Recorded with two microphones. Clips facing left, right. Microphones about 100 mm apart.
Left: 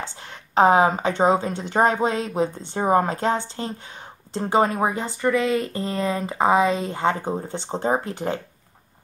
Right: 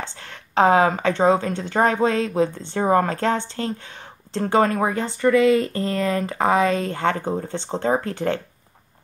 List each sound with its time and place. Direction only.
0.2 s speech: 20° left (ahead or behind)
5.7 s speech: 15° left (ahead or behind)